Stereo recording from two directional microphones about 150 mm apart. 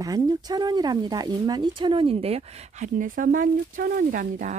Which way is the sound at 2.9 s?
65° right (ahead or behind).